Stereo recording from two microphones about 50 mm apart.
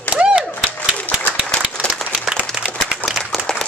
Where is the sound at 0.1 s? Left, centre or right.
Right.